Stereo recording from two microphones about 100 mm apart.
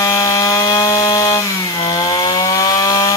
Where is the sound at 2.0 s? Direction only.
40° left (ahead or behind).